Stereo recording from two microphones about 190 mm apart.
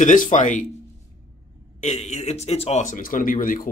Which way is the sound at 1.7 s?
35° left (ahead or behind).